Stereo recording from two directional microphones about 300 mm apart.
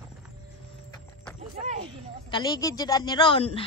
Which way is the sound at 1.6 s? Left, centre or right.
Right.